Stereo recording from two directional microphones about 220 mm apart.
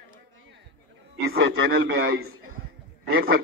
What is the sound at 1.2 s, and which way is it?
A man's voice, 50° right (ahead or behind).